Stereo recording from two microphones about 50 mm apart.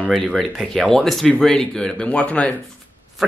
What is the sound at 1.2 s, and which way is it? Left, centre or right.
Speech, centre.